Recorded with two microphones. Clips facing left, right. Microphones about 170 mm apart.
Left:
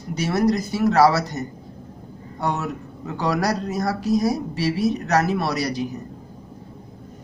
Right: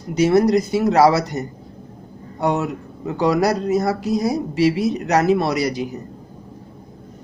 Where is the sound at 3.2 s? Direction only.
10° right (ahead or behind).